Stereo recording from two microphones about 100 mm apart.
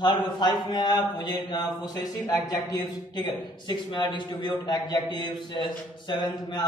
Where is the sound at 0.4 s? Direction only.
45° left (ahead or behind).